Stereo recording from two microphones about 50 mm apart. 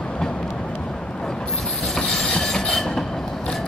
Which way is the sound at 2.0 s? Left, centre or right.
Centre.